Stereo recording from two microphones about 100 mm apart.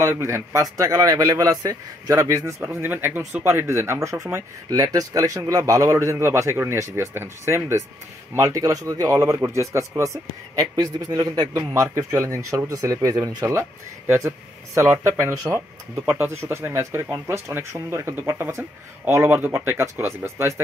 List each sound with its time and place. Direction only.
0.0 s speech: 25° right (ahead or behind)
2.6 s speech: 20° right (ahead or behind)